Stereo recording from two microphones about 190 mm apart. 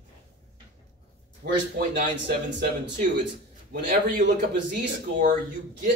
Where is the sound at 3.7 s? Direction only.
55° right (ahead or behind).